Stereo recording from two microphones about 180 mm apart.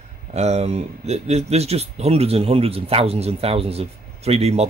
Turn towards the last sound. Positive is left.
turn(degrees=-35)  # may be behind; listen again after turning